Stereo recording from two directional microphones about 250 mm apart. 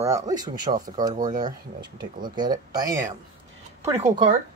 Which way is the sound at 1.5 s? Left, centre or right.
Centre.